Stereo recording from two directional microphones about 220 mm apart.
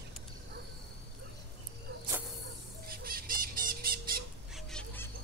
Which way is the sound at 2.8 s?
40° right (ahead or behind).